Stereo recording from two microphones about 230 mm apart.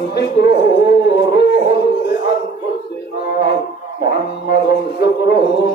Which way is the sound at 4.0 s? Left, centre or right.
Left.